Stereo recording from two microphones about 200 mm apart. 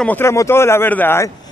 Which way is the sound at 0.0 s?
10° left (ahead or behind).